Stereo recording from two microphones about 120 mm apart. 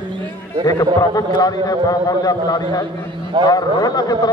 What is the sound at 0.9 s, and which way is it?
A man's voice, 30° left (ahead or behind).